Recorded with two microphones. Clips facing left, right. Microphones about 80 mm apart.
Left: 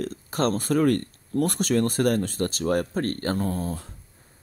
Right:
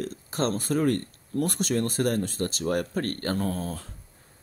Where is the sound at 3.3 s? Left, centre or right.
Centre.